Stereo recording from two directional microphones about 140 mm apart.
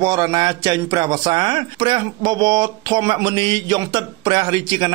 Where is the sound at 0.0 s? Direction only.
25° right (ahead or behind).